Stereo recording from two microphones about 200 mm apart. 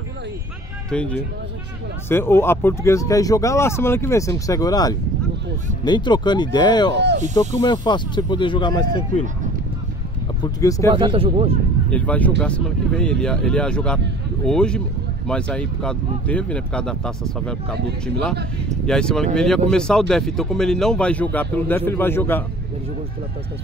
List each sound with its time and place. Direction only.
0.8 s speech: 5° left (ahead or behind); by 8.8 s 25° left (ahead or behind)
10.4 s speech: 15° left (ahead or behind)
11.0 s speech: 25° right (ahead or behind)
11.9 s speech: 5° left (ahead or behind)
18.9 s speech: 5° left (ahead or behind)